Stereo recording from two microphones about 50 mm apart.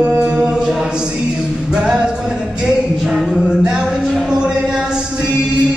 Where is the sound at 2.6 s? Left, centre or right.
Centre.